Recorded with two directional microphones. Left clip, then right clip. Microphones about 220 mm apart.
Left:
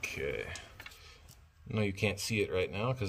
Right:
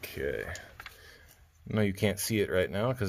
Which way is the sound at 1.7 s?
50° right (ahead or behind).